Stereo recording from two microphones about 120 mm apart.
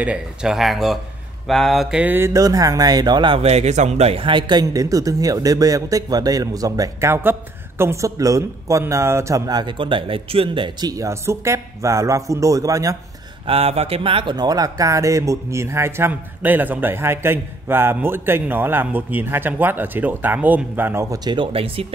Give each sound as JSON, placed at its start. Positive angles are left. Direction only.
{"t": 0.0, "sound": "speech", "side_deg": -10}
{"t": 2.1, "sound": "speech", "side_deg": -25}
{"t": 3.3, "sound": "speech", "side_deg": -60}
{"t": 4.1, "sound": "speech", "side_deg": -45}
{"t": 13.5, "sound": "speech", "side_deg": -55}
{"t": 21.2, "sound": "speech", "side_deg": -40}